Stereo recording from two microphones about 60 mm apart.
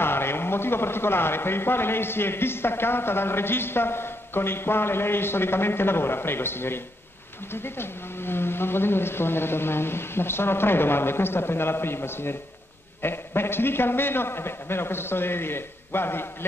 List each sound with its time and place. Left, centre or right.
0.0 s a man's voice: left